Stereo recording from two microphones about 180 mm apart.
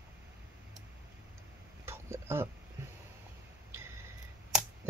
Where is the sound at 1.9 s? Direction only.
15° right (ahead or behind).